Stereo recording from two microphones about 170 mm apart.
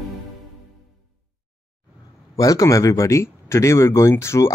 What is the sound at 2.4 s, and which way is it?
Speech, 20° left (ahead or behind).